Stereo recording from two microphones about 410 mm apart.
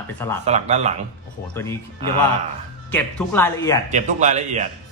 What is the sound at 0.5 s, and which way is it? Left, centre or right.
Speech, centre.